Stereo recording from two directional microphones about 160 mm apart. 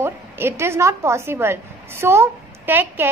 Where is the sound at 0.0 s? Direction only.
15° right (ahead or behind).